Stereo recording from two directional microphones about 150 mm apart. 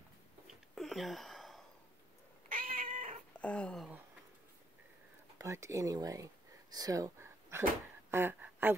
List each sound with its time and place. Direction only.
0.5 s a sound: centre (ahead or behind)
2.5 s cat: 65° right (ahead or behind)
3.3 s speech: 10° left (ahead or behind)
5.4 s speech: 20° right (ahead or behind)